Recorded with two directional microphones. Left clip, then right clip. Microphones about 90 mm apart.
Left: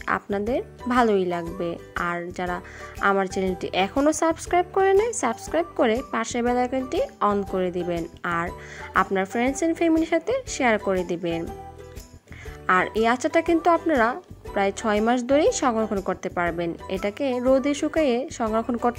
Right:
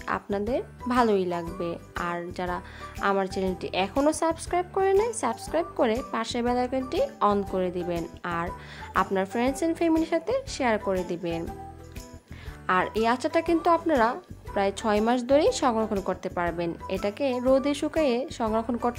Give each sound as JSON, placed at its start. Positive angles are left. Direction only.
{"t": 0.0, "sound": "speech", "side_deg": 30}
{"t": 3.0, "sound": "a woman's voice", "side_deg": 35}
{"t": 5.5, "sound": "a woman's voice", "side_deg": 25}
{"t": 12.6, "sound": "speech", "side_deg": 25}
{"t": 13.9, "sound": "a woman's voice", "side_deg": 30}
{"t": 14.5, "sound": "speech", "side_deg": 20}
{"t": 15.8, "sound": "a woman's voice", "side_deg": 0}
{"t": 16.2, "sound": "speech", "side_deg": 20}